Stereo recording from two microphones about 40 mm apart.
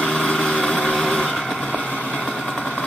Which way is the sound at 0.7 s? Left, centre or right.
Left.